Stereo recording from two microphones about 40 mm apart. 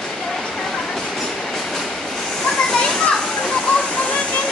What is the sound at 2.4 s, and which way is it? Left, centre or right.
Waterfall, left.